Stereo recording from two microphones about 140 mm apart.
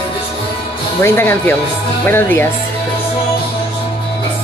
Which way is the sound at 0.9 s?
15° left (ahead or behind).